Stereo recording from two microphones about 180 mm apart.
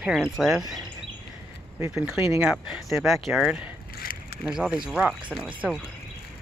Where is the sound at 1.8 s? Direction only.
15° right (ahead or behind).